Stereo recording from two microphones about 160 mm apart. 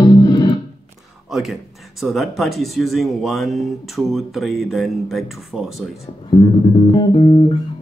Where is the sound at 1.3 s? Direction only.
Centre (ahead or behind).